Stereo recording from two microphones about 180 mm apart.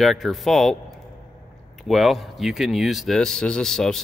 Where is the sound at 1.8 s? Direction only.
Centre (ahead or behind).